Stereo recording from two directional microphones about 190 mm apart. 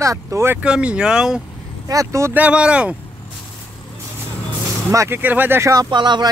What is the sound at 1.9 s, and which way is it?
Speech, 15° right (ahead or behind).